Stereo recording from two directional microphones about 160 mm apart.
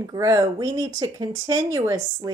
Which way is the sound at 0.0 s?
20° right (ahead or behind).